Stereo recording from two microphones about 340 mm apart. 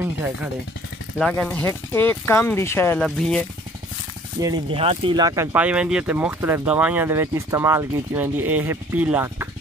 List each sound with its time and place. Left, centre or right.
0.0 s speech: centre
4.4 s speech: centre